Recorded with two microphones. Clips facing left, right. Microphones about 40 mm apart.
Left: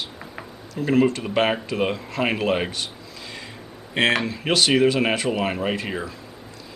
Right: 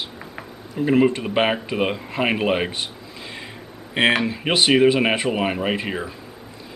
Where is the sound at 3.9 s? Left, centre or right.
Centre.